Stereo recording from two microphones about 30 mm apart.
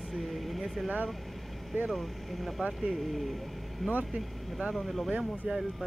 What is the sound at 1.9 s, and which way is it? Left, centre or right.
Speech, centre.